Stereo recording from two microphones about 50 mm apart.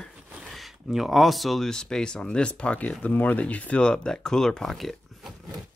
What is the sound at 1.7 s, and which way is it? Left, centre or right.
Speech, centre.